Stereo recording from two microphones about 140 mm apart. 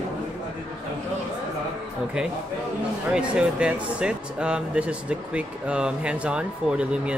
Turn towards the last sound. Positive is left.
turn(degrees=-5)  # may be behind; listen again after turning